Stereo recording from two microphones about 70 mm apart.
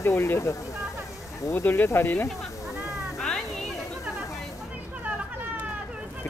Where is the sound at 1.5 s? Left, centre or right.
Left.